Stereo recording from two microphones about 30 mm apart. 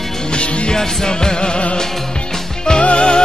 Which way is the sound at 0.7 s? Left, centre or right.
Left.